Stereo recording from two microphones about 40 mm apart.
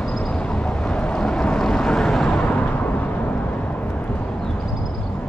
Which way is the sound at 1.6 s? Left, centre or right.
Left.